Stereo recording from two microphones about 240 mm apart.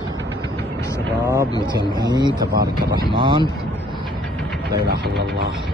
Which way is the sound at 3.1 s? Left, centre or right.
Centre.